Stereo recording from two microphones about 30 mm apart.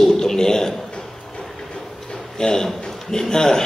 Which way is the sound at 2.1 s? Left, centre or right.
Left.